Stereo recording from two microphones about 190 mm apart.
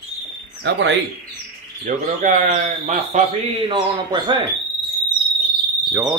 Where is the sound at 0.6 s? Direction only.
70° right (ahead or behind).